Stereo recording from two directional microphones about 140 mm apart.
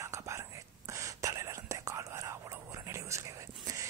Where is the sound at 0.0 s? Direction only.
20° right (ahead or behind).